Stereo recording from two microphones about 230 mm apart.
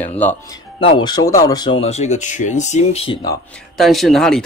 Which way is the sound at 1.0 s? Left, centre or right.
Centre.